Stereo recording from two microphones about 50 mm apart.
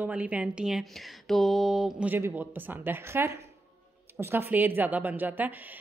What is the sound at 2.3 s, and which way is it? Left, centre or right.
Speech, right.